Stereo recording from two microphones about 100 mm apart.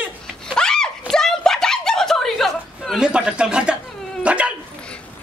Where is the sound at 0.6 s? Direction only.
5° left (ahead or behind).